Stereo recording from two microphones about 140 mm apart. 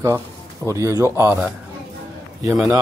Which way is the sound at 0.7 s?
20° right (ahead or behind).